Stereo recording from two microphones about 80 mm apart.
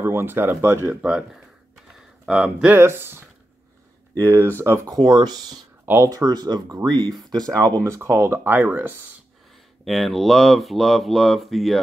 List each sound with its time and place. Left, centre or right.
0.0 s speech: right
1.0 s speech: centre
2.8 s speech: right
4.8 s speech: right
9.8 s speech: centre